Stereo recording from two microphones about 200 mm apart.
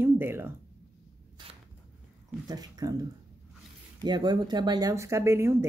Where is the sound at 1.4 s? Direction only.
25° right (ahead or behind).